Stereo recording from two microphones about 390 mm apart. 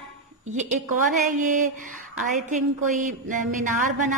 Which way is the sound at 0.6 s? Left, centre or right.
Centre.